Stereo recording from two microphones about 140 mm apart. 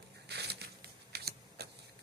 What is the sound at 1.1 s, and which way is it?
Typewriter, 90° right.